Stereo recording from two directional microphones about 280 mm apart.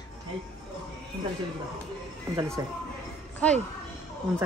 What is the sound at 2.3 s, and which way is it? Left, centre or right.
Speech, centre.